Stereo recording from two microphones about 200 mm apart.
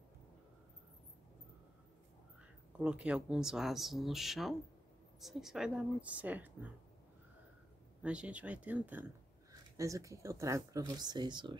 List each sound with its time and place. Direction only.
2.8 s speech: 5° right (ahead or behind)
8.0 s speech: 5° right (ahead or behind); by 11.5 s 20° right (ahead or behind)